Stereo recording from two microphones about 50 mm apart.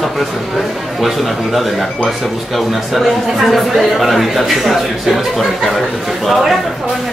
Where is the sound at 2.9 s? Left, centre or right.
Centre.